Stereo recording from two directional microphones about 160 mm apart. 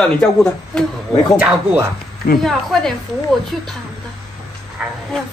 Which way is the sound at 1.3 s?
10° right (ahead or behind).